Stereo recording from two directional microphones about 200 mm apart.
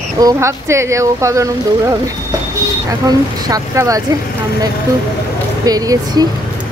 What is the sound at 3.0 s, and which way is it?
Speech, 15° right (ahead or behind).